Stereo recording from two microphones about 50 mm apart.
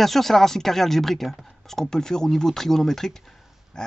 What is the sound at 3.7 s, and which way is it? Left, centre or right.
Pig, centre.